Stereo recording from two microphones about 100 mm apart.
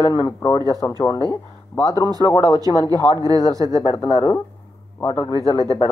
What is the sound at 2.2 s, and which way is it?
A man's voice, 35° left (ahead or behind).